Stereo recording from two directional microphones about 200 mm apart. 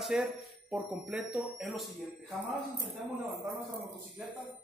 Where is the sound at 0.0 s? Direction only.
5° right (ahead or behind).